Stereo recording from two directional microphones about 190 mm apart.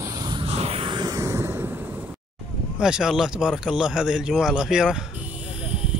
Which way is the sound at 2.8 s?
5° right (ahead or behind).